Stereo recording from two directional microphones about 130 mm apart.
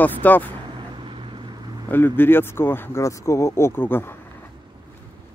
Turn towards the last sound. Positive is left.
turn(degrees=15)  # may be behind; listen again after turning